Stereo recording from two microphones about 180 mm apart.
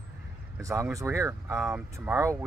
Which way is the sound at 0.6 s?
15° right (ahead or behind).